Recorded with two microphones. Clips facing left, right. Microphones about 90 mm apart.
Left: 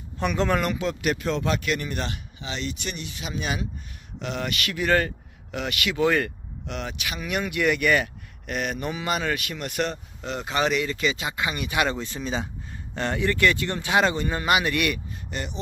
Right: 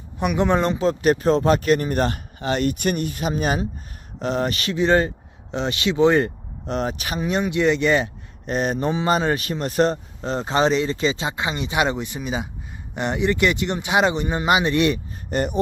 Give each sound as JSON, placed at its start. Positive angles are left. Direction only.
{"t": 0.2, "sound": "speech", "side_deg": -15}
{"t": 0.6, "sound": "speech", "side_deg": -30}
{"t": 15.3, "sound": "speech", "side_deg": -45}